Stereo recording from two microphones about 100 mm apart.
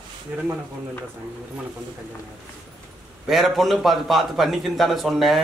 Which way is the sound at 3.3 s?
Centre (ahead or behind).